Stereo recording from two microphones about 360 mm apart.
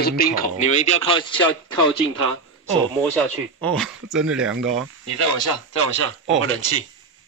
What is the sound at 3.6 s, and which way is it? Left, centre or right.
Speech, centre.